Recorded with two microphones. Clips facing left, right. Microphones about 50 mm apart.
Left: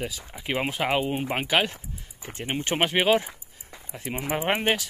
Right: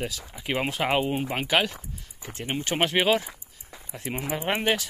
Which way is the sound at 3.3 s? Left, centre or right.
Centre.